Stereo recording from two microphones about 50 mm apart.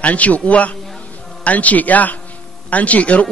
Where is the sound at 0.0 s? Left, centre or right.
Left.